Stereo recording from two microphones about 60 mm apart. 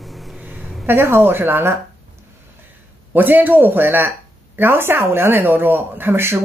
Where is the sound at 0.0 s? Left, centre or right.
Centre.